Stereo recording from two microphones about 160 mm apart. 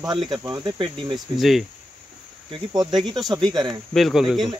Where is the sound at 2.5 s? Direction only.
25° right (ahead or behind).